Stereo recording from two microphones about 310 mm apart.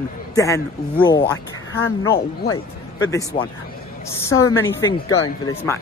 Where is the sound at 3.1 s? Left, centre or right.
Centre.